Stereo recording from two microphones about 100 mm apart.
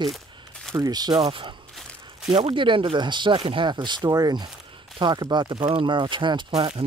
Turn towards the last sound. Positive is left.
turn(degrees=-75)  # may be behind; listen again after turning